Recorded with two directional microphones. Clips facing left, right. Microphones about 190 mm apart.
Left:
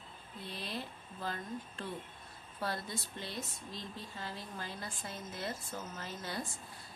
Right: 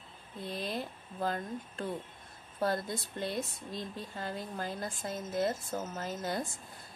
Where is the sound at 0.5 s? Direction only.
45° right (ahead or behind).